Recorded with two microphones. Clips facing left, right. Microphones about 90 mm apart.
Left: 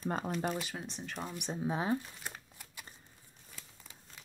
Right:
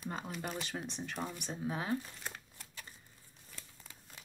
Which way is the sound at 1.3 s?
20° left (ahead or behind).